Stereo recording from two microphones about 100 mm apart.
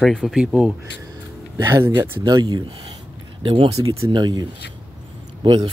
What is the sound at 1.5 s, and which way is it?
Speech, 30° right (ahead or behind).